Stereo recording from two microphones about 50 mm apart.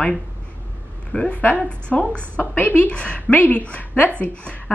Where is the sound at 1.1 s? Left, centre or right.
Left.